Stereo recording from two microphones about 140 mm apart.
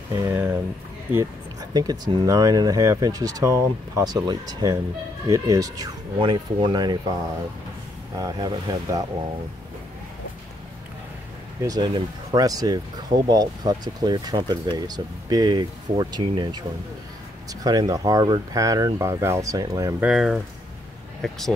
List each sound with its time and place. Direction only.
0.1 s speech: 20° right (ahead or behind)
6.1 s speech: 35° right (ahead or behind)
8.2 s speech: 30° right (ahead or behind)
11.6 s speech: 30° right (ahead or behind)
20.0 s speech: 5° right (ahead or behind)